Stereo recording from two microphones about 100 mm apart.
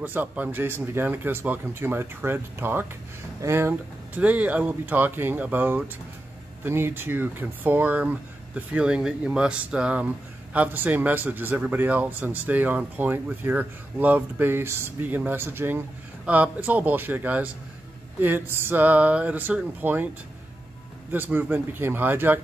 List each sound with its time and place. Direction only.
0.0 s speech: 15° right (ahead or behind)
4.2 s speech: 15° right (ahead or behind)
21.1 s speech: 20° right (ahead or behind)